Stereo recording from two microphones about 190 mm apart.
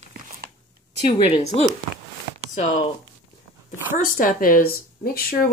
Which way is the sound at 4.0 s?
45° left (ahead or behind).